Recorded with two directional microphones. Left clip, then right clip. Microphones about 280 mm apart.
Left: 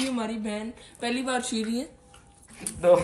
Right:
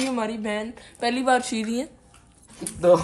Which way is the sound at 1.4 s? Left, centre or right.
Centre.